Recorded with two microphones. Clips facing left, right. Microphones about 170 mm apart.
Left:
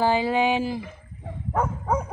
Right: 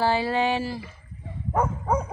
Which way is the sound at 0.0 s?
15° left (ahead or behind).